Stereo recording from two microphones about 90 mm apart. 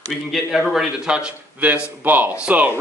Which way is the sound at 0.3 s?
5° right (ahead or behind).